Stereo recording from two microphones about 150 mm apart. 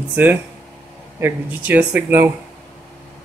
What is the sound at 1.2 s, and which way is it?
Speech, 10° right (ahead or behind).